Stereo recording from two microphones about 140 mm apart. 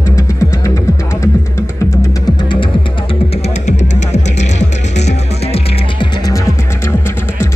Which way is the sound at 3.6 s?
55° left (ahead or behind).